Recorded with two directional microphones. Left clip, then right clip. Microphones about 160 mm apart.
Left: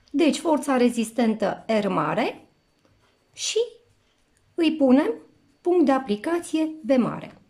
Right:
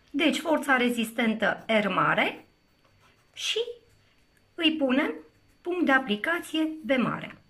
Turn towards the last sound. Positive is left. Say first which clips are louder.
# left 4 dB
turn(degrees=25)  # may be behind; listen again after turning